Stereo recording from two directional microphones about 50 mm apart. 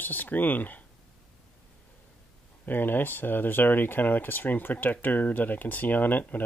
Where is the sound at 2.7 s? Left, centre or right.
Left.